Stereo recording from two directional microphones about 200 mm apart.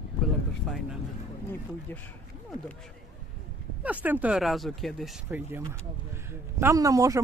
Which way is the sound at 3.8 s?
10° right (ahead or behind).